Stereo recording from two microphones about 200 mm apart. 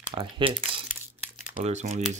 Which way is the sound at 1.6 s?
35° right (ahead or behind).